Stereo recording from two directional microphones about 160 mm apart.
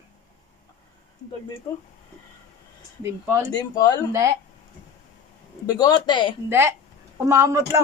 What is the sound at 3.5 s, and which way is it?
Speech, 25° left (ahead or behind).